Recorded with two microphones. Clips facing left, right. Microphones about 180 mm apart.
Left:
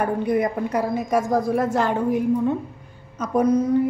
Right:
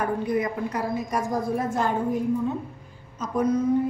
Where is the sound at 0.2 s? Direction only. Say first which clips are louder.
Left 4 dB; 60° left (ahead or behind).